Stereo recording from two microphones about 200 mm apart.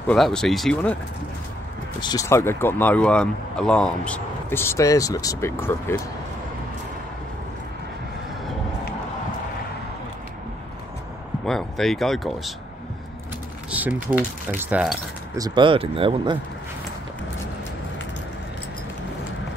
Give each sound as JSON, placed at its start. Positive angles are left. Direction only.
{"t": 0.0, "sound": "speech", "side_deg": 5}
{"t": 2.0, "sound": "speech", "side_deg": 20}
{"t": 11.4, "sound": "speech", "side_deg": 0}
{"t": 13.7, "sound": "speech", "side_deg": -10}
{"t": 15.3, "sound": "speech", "side_deg": -20}